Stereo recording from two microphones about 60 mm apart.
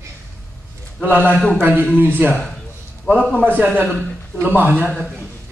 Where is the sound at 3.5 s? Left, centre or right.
Right.